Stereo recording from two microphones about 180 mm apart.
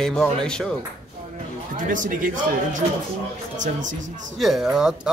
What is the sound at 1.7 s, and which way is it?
Speech, 45° right (ahead or behind).